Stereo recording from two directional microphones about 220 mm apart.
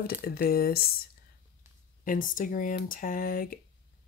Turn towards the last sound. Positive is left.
turn(degrees=40)  # may be behind; listen again after turning